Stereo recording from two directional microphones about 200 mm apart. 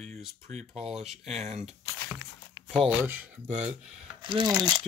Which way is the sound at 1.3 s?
35° right (ahead or behind).